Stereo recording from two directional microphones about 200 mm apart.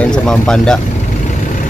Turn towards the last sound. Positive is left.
turn(degrees=5)  # may be behind; listen again after turning